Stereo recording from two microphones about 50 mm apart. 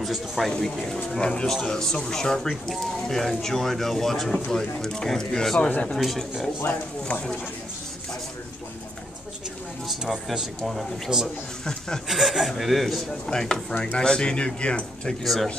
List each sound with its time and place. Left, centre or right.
0.0 s speech: centre
0.5 s speech: centre
5.7 s speech: left
5.9 s speech: centre
7.1 s speech: centre
9.8 s speech: centre
11.1 s speech: centre
13.3 s speech: centre